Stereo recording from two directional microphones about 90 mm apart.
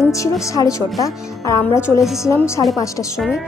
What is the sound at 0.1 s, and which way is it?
Speech, 35° left (ahead or behind).